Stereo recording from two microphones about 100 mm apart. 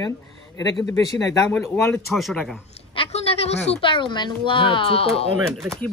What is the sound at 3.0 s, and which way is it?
A woman's voice, 80° left.